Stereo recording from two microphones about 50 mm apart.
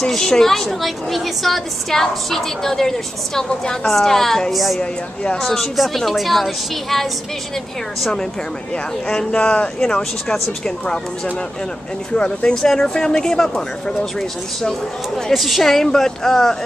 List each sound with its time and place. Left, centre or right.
0.0 s a woman's voice: centre
4.7 s speech: centre
5.4 s a woman's voice: centre
9.3 s a woman's voice: left
12.1 s a woman's voice: left